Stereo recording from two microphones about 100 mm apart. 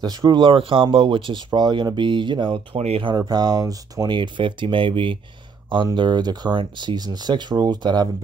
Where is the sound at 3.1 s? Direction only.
45° right (ahead or behind); by 5.2 s 60° right (ahead or behind).